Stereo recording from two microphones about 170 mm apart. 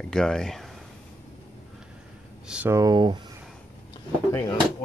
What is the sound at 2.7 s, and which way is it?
Speech, 25° right (ahead or behind).